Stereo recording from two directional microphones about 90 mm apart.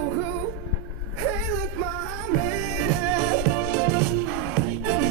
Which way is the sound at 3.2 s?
15° right (ahead or behind).